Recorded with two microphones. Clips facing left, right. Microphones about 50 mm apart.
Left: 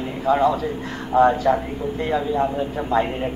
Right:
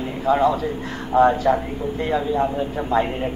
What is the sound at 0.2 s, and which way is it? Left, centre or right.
A man's voice, centre.